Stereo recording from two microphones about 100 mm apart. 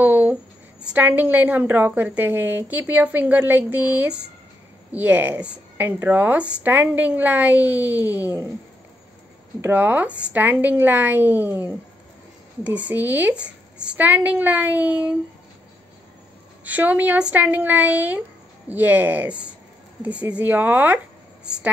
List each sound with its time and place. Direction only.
0.0 s a sound: 15° right (ahead or behind)
0.9 s speech: 20° right (ahead or behind)
9.6 s a woman's voice: 20° right (ahead or behind)
12.7 s speech: 15° right (ahead or behind)
16.6 s speech: 15° right (ahead or behind)